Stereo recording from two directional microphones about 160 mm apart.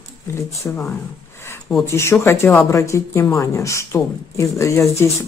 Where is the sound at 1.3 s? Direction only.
15° left (ahead or behind).